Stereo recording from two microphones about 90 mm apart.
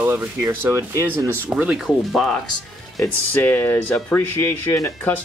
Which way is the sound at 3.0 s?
20° left (ahead or behind).